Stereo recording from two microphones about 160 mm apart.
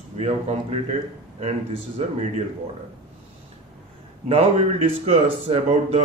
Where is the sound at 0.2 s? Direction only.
40° right (ahead or behind).